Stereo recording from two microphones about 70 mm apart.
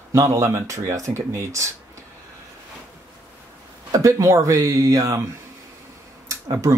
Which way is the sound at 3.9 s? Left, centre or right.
Right.